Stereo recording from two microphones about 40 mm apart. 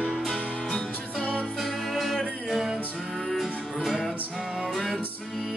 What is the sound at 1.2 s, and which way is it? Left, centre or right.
Music, left.